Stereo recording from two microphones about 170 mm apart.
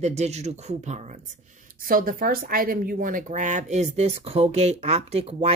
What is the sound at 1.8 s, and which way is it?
Speech, 55° right (ahead or behind).